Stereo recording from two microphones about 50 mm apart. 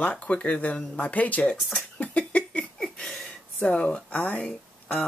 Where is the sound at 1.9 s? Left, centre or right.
Left.